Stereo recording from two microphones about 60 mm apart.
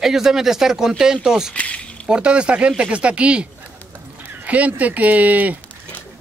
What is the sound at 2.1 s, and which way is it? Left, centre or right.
Speech, centre.